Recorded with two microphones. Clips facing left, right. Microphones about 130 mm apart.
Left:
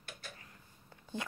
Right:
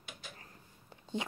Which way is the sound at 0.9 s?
20° right (ahead or behind).